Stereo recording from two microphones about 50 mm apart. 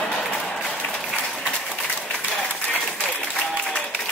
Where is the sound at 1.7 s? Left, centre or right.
Left.